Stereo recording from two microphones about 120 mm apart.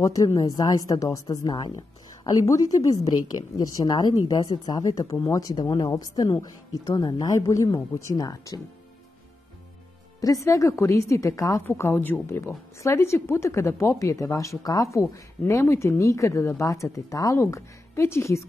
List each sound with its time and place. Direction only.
0.0 s a woman's voice: 30° left (ahead or behind)
10.2 s a woman's voice: 30° left (ahead or behind)